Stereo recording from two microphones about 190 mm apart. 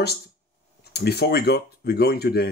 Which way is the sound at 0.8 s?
60° left (ahead or behind).